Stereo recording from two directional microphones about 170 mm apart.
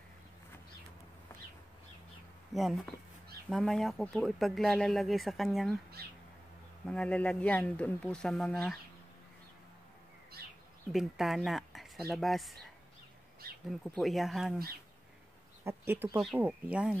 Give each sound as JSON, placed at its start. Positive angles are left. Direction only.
{"t": 2.5, "sound": "speech", "side_deg": 0}
{"t": 6.0, "sound": "speech", "side_deg": -65}
{"t": 6.9, "sound": "speech", "side_deg": 5}
{"t": 10.9, "sound": "speech", "side_deg": 0}
{"t": 13.7, "sound": "speech", "side_deg": 0}
{"t": 15.6, "sound": "speech", "side_deg": -10}